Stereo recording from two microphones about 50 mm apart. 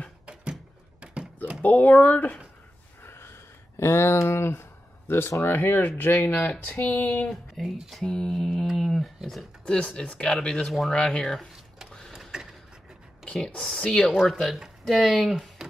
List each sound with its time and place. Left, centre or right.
1.0 s a sound: right
1.6 s speech: left
3.0 s a sound: left
5.4 s speech: left
7.6 s speech: centre
8.0 s mantra: centre
8.7 s speech: centre
9.7 s speech: left
10.3 s mantra: centre
12.1 s printer: centre
13.2 s a sound: centre
13.7 s mantra: centre
14.9 s speech: centre